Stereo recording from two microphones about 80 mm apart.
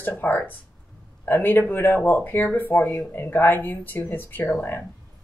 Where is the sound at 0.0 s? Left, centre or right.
Left.